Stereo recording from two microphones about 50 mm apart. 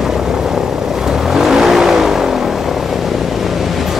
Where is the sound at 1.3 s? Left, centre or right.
Centre.